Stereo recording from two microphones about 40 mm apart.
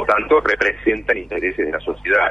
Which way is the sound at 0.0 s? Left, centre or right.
Centre.